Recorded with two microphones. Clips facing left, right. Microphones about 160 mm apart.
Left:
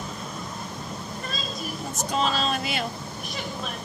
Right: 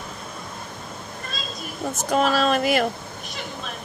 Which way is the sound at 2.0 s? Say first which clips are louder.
Right 6 dB; 55° right (ahead or behind).